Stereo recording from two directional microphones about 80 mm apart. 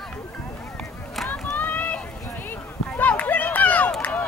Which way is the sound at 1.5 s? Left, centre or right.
Left.